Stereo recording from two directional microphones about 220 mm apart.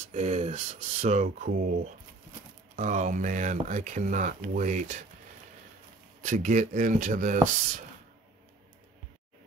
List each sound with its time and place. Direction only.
0.1 s speech: 30° right (ahead or behind)
2.7 s speech: 35° right (ahead or behind)
6.2 s speech: 35° right (ahead or behind)